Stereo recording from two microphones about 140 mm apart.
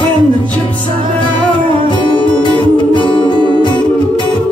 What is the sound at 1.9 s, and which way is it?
Music, 30° left (ahead or behind).